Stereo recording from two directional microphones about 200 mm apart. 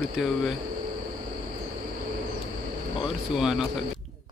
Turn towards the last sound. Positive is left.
turn(degrees=0)  # may be behind; listen again after turning